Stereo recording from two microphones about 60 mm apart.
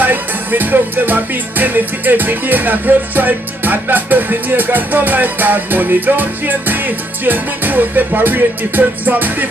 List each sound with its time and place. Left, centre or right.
0.0 s music: right